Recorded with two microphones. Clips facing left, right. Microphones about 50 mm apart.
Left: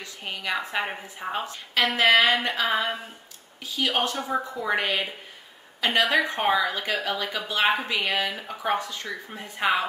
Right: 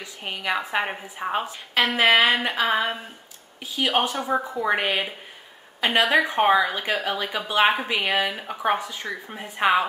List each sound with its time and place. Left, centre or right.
0.0 s a woman's voice: centre